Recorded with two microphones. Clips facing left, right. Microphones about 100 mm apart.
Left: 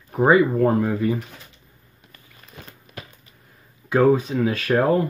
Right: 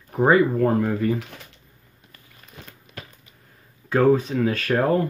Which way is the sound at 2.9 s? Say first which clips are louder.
Left 1 dB; 45° left (ahead or behind).